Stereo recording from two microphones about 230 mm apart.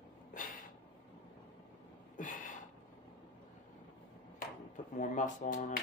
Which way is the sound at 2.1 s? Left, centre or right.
Left.